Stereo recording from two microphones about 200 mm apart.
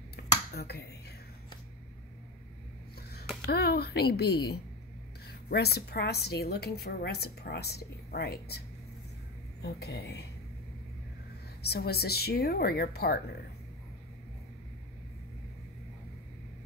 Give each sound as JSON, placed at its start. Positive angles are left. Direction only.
{"t": 0.1, "sound": "finger snapping", "side_deg": 50}
{"t": 3.4, "sound": "a woman's voice", "side_deg": 50}
{"t": 11.6, "sound": "a woman's voice", "side_deg": 55}